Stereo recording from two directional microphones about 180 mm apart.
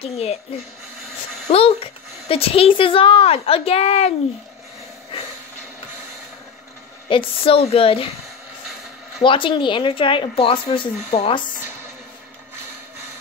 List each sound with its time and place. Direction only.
0.0 s a woman's voice: 35° left (ahead or behind)
1.5 s a woman's voice: 35° left (ahead or behind)
7.1 s a woman's voice: 30° left (ahead or behind)
9.2 s speech: 30° left (ahead or behind)